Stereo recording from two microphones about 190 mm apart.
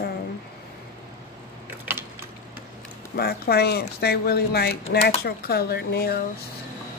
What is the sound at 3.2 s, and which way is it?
Speech, 55° left (ahead or behind).